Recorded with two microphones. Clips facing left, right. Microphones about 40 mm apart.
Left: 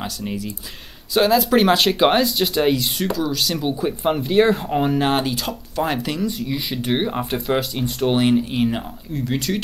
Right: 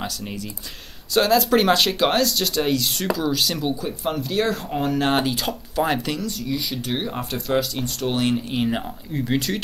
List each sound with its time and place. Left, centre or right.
0.0 s speech: centre
3.2 s speech: centre
4.0 s speech: left
5.0 s speech: centre
6.2 s speech: centre
8.4 s speech: centre
8.6 s speech: centre